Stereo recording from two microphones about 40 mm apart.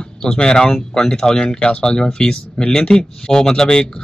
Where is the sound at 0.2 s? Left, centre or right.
Centre.